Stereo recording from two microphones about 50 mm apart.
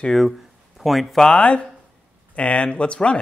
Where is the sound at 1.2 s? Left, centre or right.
Left.